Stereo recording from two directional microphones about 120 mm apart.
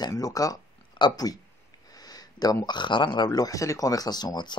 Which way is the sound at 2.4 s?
35° left (ahead or behind).